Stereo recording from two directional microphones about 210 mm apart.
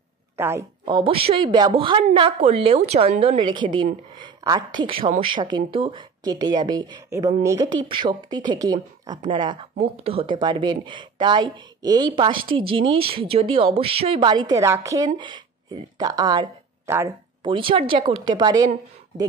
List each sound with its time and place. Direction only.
0.4 s a woman's voice: 10° right (ahead or behind)
0.8 s speech: 25° right (ahead or behind)
17.5 s speech: 25° right (ahead or behind)